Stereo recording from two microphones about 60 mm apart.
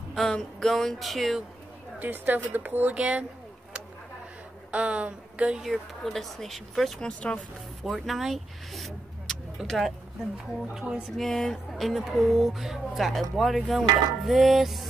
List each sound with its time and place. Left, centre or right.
0.1 s speech: centre
2.0 s speech: right
3.0 s speech: right
4.6 s a woman's voice: right
5.6 s speech: centre
7.0 s speech: centre
8.0 s speech: centre
10.7 s music: centre
11.1 s speech: centre